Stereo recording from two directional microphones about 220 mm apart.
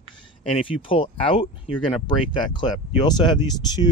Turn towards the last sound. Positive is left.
turn(degrees=20)  # may be behind; listen again after turning